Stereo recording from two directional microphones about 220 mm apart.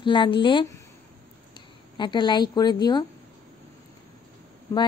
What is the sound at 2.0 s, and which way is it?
Speech, 20° left (ahead or behind).